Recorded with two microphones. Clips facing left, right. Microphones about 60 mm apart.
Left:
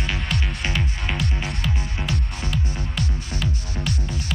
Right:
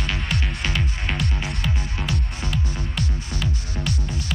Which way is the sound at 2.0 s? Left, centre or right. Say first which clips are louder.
Even; centre.